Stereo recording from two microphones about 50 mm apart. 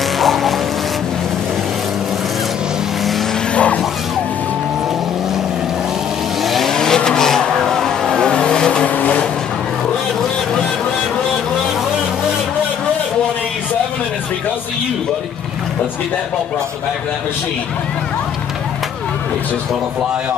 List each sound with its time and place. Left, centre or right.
0.2 s vehicle: centre
3.5 s vehicle: left
6.4 s vehicle: centre
6.8 s vehicle: centre
8.8 s vehicle: left